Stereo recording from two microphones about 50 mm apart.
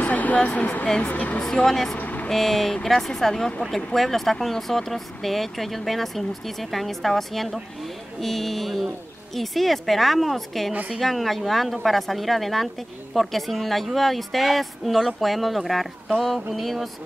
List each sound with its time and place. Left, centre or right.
0.0 s a sound: left
1.0 s speech: left
1.4 s speech: centre
2.0 s vehicle: left
2.2 s speech: centre